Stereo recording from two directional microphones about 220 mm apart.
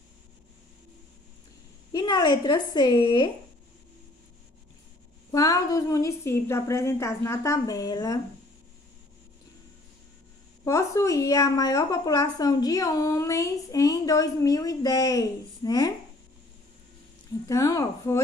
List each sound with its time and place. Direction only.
1.9 s a woman's voice: 20° left (ahead or behind)
5.3 s a woman's voice: 15° left (ahead or behind)
10.6 s a woman's voice: 15° left (ahead or behind)
17.5 s a woman's voice: 15° left (ahead or behind)